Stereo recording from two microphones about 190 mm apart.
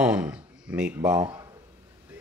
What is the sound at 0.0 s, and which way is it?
Speech, 5° right (ahead or behind).